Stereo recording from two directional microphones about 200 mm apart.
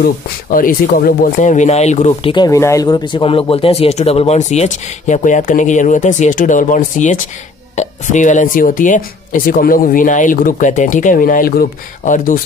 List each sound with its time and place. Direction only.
0.0 s speech: 45° left (ahead or behind)
2.3 s speech: 20° left (ahead or behind); by 12.4 s 40° left (ahead or behind)